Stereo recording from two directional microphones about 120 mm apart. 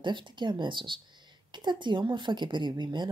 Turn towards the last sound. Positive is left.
turn(degrees=-40)  # may be behind; listen again after turning